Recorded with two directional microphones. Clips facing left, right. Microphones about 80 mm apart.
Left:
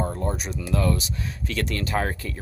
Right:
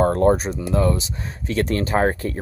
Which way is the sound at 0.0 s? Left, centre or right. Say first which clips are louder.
Right 11 dB; right.